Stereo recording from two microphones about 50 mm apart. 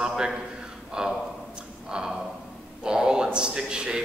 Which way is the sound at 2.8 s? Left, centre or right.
Centre.